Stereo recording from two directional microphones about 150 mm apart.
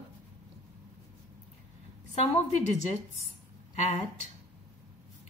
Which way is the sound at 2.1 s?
45° left (ahead or behind).